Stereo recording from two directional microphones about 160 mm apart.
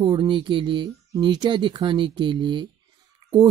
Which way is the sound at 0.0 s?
30° right (ahead or behind).